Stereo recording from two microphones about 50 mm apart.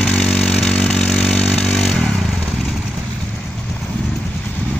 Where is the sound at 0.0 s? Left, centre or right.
Centre.